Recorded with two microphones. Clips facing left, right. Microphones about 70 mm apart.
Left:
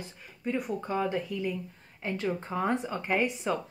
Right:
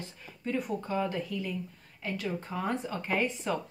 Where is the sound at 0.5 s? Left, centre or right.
Centre.